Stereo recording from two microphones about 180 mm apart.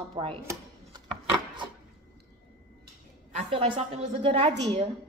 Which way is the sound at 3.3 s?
30° right (ahead or behind).